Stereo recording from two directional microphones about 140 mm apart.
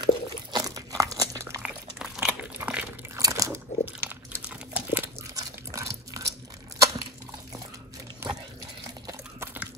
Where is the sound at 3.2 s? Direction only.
25° right (ahead or behind).